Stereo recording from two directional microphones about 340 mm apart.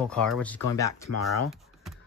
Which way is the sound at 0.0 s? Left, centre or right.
Centre.